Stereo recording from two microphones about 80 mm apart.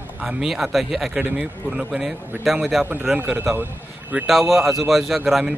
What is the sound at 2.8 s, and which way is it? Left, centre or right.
Speech, right.